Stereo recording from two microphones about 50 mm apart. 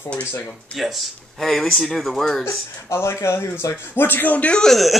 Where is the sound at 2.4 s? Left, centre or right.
Left.